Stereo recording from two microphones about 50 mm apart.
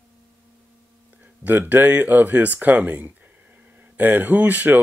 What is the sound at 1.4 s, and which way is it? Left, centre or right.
Speech, right.